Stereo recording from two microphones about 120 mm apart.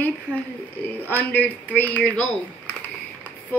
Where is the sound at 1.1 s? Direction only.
15° left (ahead or behind).